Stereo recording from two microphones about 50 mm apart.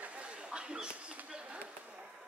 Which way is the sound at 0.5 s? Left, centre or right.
Centre.